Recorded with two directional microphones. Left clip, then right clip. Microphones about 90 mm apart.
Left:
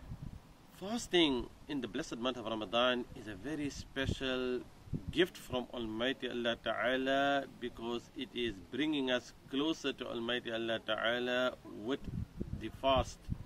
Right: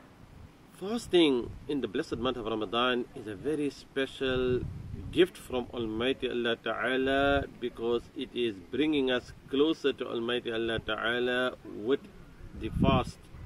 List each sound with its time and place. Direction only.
0.7 s speech: 25° left (ahead or behind)